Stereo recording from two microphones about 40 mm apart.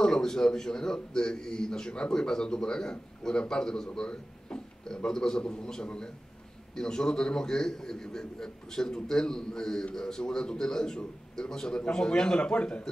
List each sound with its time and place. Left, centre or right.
0.0 s a man's voice: centre